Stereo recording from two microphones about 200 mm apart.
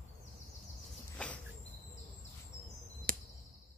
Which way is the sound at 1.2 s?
5° left (ahead or behind).